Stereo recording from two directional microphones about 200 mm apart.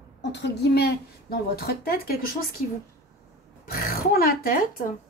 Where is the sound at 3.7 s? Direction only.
45° left (ahead or behind).